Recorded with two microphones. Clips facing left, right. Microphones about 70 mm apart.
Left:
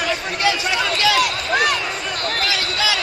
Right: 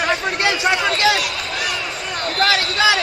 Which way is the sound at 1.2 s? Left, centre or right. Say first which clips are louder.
Left 6 dB; left.